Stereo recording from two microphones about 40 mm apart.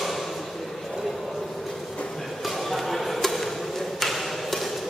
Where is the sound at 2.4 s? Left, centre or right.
Centre.